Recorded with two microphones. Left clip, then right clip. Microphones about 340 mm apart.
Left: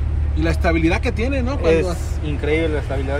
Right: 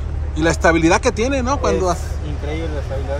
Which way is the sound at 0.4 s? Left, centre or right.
Centre.